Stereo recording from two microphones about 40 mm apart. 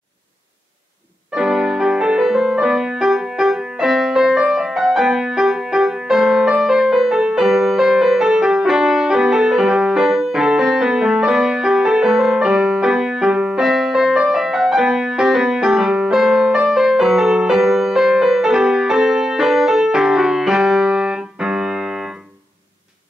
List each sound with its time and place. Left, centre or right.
1.3 s music: centre